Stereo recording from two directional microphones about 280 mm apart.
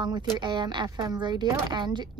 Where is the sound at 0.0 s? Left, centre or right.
Centre.